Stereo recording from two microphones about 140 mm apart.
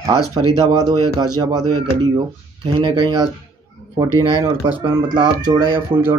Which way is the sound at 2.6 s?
35° right (ahead or behind).